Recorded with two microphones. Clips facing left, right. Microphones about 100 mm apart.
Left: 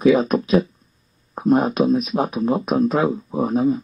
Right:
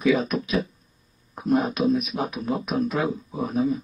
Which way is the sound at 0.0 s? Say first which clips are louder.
Left 6 dB; 35° left (ahead or behind).